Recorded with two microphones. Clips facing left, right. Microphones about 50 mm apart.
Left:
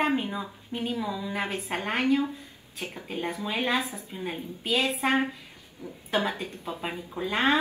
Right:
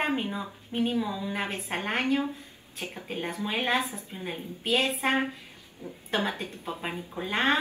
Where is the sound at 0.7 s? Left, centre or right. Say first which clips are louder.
Right 2 dB; right.